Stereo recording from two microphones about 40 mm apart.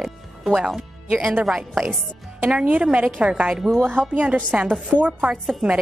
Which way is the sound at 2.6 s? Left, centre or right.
Right.